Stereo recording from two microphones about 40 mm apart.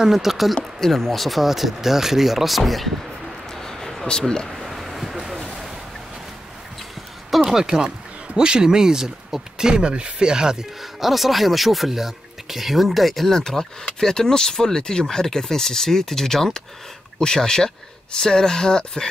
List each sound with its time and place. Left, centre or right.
0.0 s speech: centre
0.7 s speech: centre
3.5 s a sound: centre
4.5 s vehicle: centre
7.2 s speech: centre
10.8 s speech: centre